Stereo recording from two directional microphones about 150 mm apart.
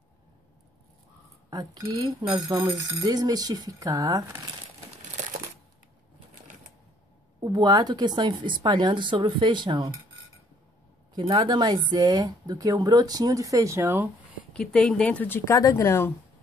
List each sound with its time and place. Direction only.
1.5 s speech: 30° right (ahead or behind)
7.3 s speech: 25° right (ahead or behind)
11.1 s speech: 30° right (ahead or behind)
14.5 s speech: 5° left (ahead or behind)